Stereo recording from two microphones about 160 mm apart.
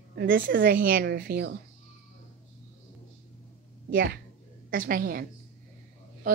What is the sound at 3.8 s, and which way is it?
A woman's voice, 65° right (ahead or behind).